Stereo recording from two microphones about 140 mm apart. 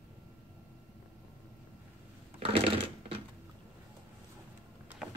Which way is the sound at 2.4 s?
40° right (ahead or behind).